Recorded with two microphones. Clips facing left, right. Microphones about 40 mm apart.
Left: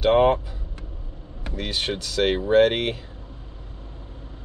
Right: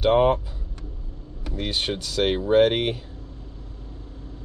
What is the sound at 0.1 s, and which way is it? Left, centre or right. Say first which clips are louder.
Speech: left 1 dB; left.